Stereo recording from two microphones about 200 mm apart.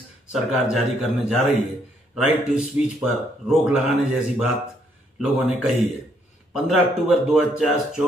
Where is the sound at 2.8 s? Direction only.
10° right (ahead or behind).